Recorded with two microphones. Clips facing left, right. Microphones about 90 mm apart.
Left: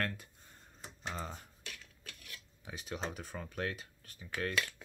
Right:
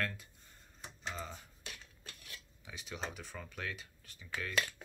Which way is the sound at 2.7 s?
45° left (ahead or behind).